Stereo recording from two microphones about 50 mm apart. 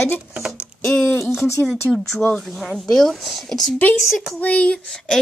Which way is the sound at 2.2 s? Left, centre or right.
Left.